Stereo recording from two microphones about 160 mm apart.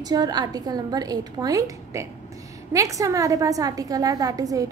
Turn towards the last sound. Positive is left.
turn(degrees=-20)  # may be behind; listen again after turning